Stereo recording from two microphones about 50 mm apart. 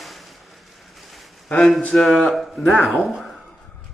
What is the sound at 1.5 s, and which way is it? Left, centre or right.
Speech, centre.